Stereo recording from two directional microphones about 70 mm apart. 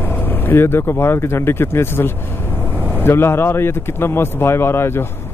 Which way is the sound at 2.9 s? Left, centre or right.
Left.